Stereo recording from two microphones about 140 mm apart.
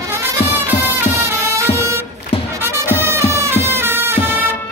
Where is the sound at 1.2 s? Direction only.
20° right (ahead or behind).